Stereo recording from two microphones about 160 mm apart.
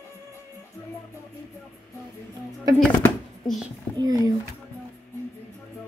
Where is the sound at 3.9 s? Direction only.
25° right (ahead or behind).